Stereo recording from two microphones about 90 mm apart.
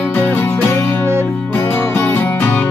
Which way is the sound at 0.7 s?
30° left (ahead or behind).